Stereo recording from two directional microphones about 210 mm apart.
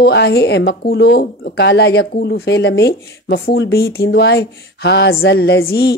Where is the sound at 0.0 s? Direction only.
55° left (ahead or behind).